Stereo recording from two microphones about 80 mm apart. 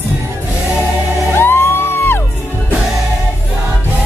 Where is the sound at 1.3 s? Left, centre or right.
Left.